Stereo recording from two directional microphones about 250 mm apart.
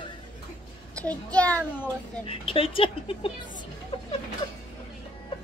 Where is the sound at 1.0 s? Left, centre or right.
Centre.